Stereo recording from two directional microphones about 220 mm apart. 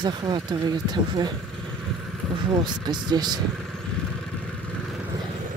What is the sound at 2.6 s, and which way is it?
Speech, 20° right (ahead or behind).